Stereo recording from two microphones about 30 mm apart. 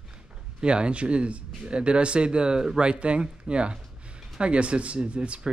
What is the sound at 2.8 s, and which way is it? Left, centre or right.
Speech, right.